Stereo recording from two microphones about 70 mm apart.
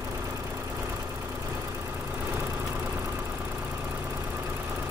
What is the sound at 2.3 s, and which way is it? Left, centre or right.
Vehicle, right.